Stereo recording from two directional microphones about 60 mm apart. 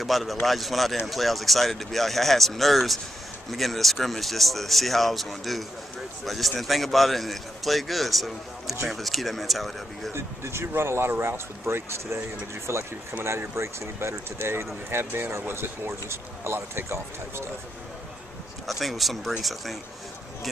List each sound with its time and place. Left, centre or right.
0.0 s a man's voice: centre
10.1 s speech: right
18.7 s a man's voice: centre